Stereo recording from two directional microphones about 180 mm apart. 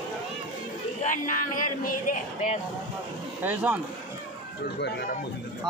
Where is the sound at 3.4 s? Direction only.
10° right (ahead or behind).